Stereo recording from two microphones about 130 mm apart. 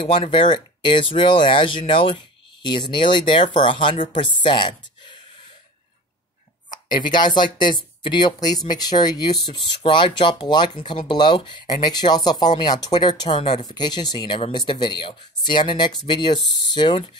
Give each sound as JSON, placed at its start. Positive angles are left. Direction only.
{"t": 0.3, "sound": "speech", "side_deg": 40}
{"t": 7.1, "sound": "speech", "side_deg": 35}
{"t": 13.4, "sound": "speech", "side_deg": 50}
{"t": 13.7, "sound": "speech", "side_deg": 35}